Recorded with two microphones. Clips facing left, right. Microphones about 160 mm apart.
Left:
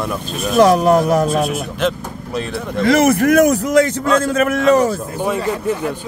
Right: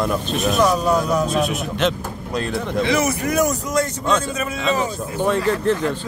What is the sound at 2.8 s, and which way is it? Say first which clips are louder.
Speech: left 11 dB; 50° left (ahead or behind).